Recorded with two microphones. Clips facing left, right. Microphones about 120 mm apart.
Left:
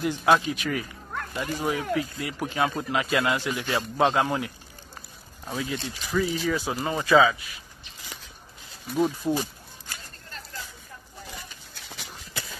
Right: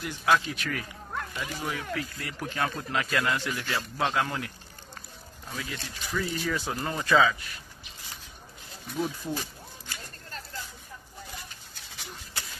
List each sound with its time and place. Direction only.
0.0 s speech: 25° left (ahead or behind)
1.3 s speech: 30° left (ahead or behind)
1.7 s speech: 15° left (ahead or behind)
5.5 s speech: 25° left (ahead or behind)
6.1 s speech: 10° left (ahead or behind)
8.8 s speech: 5° left (ahead or behind)
9.2 s speech: 15° left (ahead or behind)